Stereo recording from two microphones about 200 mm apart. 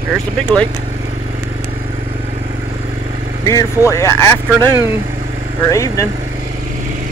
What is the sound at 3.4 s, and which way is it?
Speech, 15° left (ahead or behind).